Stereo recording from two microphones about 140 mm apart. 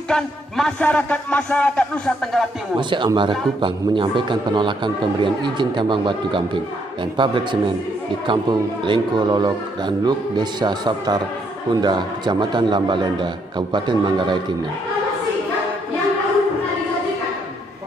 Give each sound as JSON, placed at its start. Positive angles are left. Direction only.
{"t": 0.1, "sound": "speech", "side_deg": 5}
{"t": 2.8, "sound": "a man's voice", "side_deg": -35}